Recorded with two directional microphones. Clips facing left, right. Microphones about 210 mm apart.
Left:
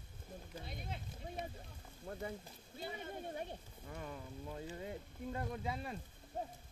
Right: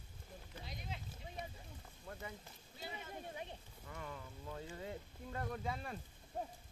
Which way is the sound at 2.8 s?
50° left (ahead or behind).